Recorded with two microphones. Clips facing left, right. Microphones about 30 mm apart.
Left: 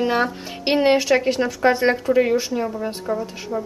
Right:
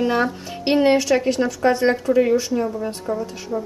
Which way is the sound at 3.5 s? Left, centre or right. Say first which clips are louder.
Even; centre.